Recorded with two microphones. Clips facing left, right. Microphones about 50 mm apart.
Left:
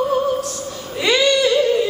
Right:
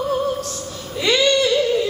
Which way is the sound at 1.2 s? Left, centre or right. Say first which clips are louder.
Left 2 dB; centre.